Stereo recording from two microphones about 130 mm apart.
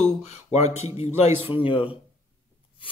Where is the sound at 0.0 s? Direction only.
60° left (ahead or behind).